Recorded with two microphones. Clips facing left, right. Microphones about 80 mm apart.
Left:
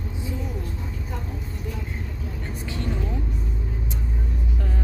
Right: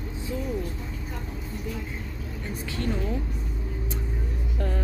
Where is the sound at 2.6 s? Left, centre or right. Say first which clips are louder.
Even; left.